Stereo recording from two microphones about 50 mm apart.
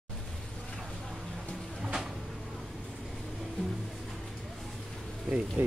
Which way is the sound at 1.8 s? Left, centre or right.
Centre.